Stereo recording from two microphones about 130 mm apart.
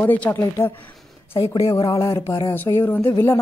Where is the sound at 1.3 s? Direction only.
40° left (ahead or behind).